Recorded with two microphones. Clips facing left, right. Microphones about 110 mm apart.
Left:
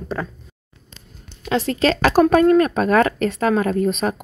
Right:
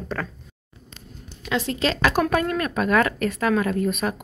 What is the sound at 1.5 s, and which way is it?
Speech, 40° left (ahead or behind).